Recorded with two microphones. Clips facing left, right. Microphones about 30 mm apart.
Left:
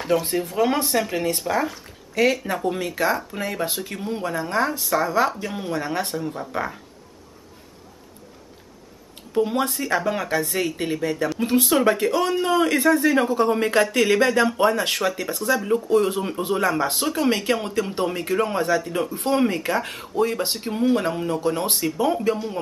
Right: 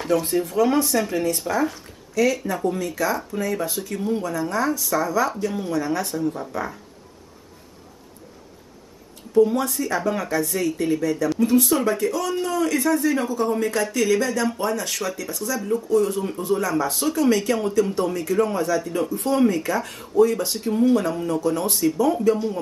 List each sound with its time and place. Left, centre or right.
0.1 s speech: left
0.6 s speech: left
2.4 s speech: left
6.1 s speech: left
9.3 s speech: left